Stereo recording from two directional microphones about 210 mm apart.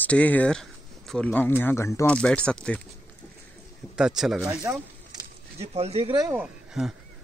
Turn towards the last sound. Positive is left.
turn(degrees=-5)  # may be behind; listen again after turning